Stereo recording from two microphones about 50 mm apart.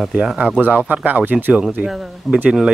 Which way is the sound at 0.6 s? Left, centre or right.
Right.